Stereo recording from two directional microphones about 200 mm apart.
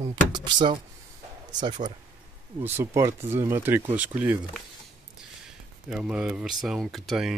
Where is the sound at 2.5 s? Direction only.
10° right (ahead or behind).